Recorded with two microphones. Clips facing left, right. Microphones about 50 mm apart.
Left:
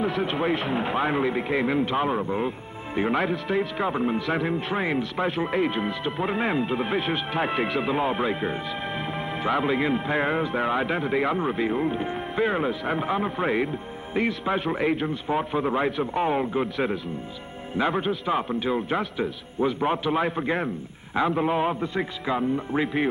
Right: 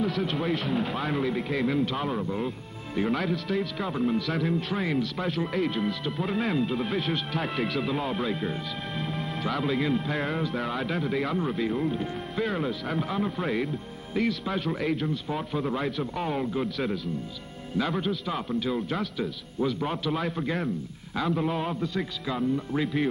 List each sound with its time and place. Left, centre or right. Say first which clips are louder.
0.0 s speech: left 3 dB; left